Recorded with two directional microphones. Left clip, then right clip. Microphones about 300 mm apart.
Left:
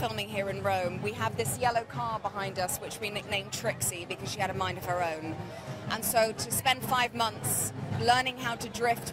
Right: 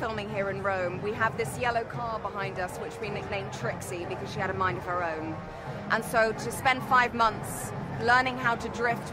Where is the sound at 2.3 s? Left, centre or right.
Left.